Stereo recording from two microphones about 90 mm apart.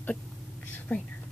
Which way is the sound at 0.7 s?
20° left (ahead or behind).